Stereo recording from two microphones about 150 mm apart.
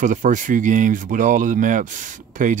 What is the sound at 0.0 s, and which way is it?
Speech, 55° right (ahead or behind).